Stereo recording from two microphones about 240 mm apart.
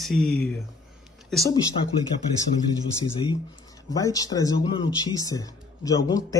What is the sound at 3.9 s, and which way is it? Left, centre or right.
Speech, centre.